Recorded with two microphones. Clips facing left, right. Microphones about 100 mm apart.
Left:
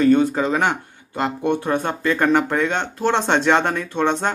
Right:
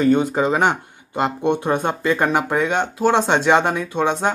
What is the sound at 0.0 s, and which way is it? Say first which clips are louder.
Speech: left 1 dB; 15° right (ahead or behind).